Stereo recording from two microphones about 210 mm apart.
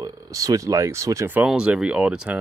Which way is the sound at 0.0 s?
15° right (ahead or behind).